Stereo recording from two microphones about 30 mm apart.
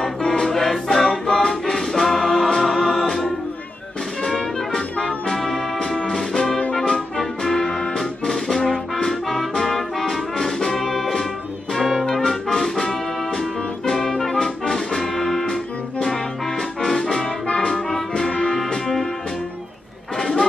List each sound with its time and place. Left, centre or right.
0.3 s music: centre
4.9 s brass instrument: left
5.3 s brass instrument: centre
5.8 s music: centre
8.0 s brass instrument: centre
11.7 s music: centre
12.1 s music: centre
16.8 s music: centre
20.2 s a sound: centre